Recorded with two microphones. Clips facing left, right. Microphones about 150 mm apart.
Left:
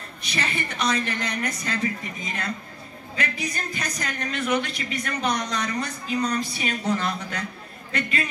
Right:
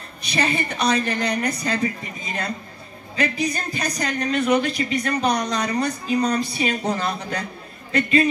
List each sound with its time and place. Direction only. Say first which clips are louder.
0.3 s a woman's voice: right 6 dB; 35° right (ahead or behind)
3.2 s a woman's voice: right 6 dB; 35° right (ahead or behind)